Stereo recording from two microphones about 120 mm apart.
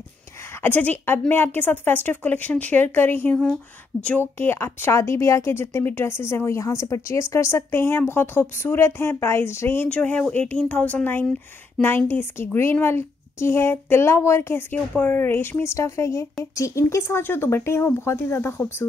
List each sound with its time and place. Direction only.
0.6 s a woman's voice: 15° left (ahead or behind)